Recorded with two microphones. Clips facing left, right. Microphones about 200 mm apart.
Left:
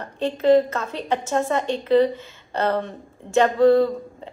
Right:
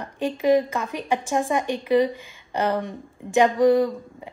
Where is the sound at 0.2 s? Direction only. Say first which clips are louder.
Left 3 dB; 15° right (ahead or behind).